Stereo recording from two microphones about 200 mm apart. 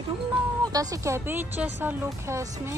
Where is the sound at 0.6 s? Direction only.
20° right (ahead or behind).